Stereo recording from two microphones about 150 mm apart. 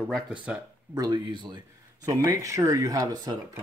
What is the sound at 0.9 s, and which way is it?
Speech, 25° right (ahead or behind).